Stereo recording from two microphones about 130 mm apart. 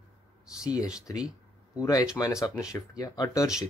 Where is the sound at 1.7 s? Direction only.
25° left (ahead or behind).